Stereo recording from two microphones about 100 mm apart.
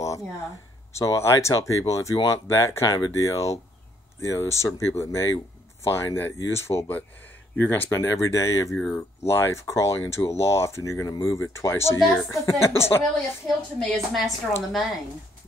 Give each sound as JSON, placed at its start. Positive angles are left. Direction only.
{"t": 0.9, "sound": "speech", "side_deg": 30}
{"t": 8.7, "sound": "speech", "side_deg": 20}
{"t": 13.7, "sound": "a woman's voice", "side_deg": 0}